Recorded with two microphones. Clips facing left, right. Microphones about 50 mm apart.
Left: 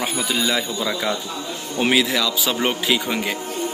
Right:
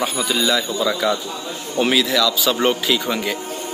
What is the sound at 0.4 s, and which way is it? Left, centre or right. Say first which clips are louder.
A man's voice: right 4 dB; left.